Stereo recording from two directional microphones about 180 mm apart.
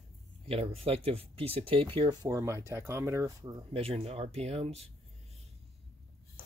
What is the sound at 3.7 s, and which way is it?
Speech, 30° right (ahead or behind).